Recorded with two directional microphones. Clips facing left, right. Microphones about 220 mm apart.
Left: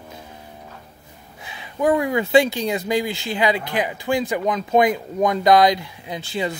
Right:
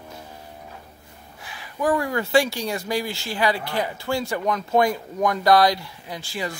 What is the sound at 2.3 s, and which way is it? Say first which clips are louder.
Speech: left 4 dB; 20° left (ahead or behind).